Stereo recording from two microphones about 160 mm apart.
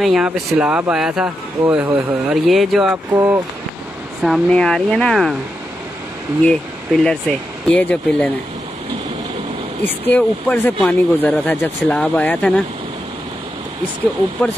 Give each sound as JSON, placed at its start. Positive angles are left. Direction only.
{"t": 0.0, "sound": "speech", "side_deg": 0}
{"t": 3.2, "sound": "speech", "side_deg": -20}
{"t": 4.2, "sound": "speech", "side_deg": 5}
{"t": 6.4, "sound": "speech", "side_deg": 5}
{"t": 10.1, "sound": "speech", "side_deg": 10}